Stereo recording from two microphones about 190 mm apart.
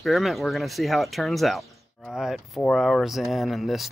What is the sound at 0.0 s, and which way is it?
Speech, centre (ahead or behind).